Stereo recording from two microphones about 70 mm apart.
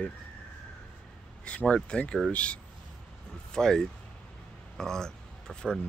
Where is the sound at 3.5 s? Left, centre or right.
Centre.